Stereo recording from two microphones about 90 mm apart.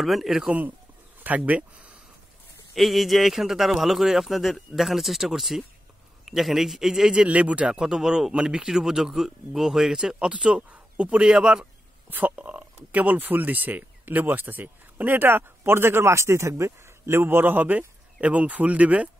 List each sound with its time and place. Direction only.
0.0 s a man's voice: centre (ahead or behind)
0.5 s speech: 20° right (ahead or behind)
2.7 s a man's voice: centre (ahead or behind); by 19.0 s 15° right (ahead or behind)